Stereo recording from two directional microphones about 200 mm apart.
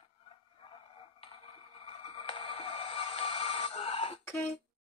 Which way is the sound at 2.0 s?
25° left (ahead or behind).